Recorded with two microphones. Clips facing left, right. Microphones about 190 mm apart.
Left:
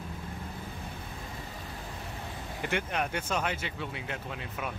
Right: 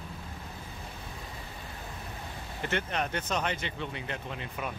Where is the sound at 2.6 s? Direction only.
10° left (ahead or behind).